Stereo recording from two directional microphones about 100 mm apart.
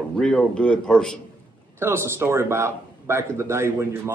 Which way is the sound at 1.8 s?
25° right (ahead or behind).